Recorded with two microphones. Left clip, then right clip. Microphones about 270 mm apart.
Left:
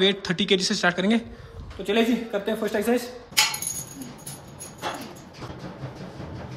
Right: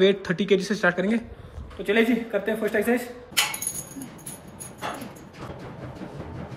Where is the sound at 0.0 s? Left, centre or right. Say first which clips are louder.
Right 1 dB; centre.